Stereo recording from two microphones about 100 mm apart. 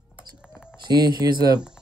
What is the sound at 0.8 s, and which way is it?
Speech, 45° right (ahead or behind).